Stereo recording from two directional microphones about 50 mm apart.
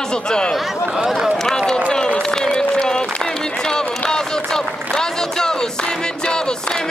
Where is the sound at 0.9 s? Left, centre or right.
Centre.